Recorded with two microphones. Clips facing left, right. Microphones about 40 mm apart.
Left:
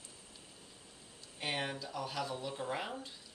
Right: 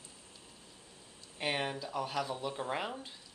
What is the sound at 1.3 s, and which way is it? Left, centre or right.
Speech, centre.